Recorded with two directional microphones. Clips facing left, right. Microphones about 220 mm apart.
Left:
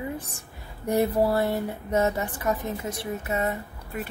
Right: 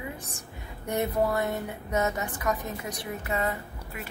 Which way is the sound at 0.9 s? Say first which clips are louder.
Left 4 dB; 30° left (ahead or behind).